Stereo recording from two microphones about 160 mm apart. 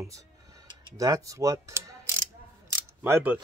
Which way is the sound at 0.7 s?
20° right (ahead or behind).